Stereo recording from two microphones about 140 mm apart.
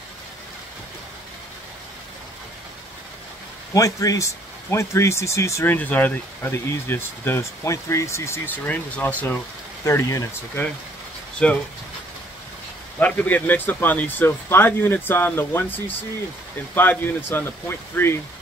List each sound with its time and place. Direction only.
3.7 s speech: 25° left (ahead or behind)
11.4 s speech: 5° left (ahead or behind)
13.0 s speech: 10° left (ahead or behind)